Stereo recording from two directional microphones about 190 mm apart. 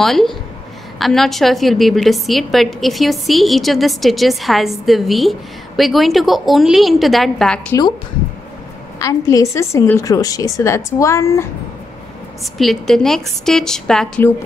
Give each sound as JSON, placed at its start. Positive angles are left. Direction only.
{"t": 0.0, "sound": "a woman's voice", "side_deg": 0}
{"t": 9.0, "sound": "a woman's voice", "side_deg": 15}
{"t": 12.5, "sound": "a woman's voice", "side_deg": 0}